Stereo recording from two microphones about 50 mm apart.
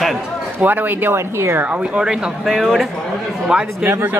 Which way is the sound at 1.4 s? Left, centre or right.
Right.